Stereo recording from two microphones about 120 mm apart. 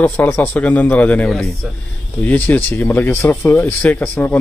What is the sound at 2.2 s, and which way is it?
Speech, 15° left (ahead or behind).